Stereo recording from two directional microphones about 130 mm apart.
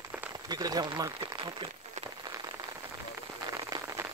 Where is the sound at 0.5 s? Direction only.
30° right (ahead or behind).